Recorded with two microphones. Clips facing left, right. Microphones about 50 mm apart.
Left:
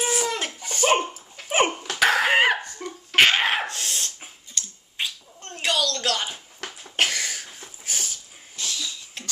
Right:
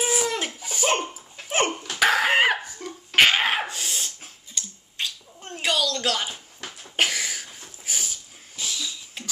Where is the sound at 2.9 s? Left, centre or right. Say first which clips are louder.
Even; centre.